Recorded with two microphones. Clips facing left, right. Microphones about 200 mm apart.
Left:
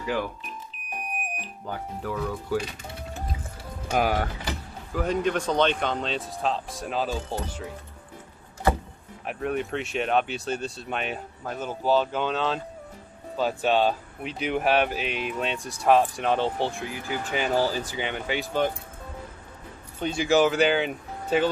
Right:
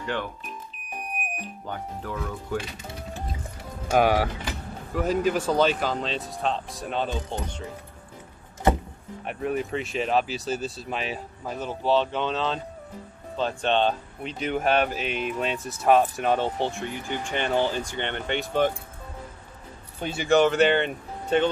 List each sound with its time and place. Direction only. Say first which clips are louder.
0.0 s speech: left 2 dB; 5° left (ahead or behind)
1.7 s speech: left 2 dB; 5° left (ahead or behind)
3.9 s speech: right 4 dB; centre (ahead or behind)
8.6 s vehicle: right 2 dB; 20° right (ahead or behind)
9.2 s speech: even; centre (ahead or behind)
20.0 s speech: right 1 dB; 5° right (ahead or behind)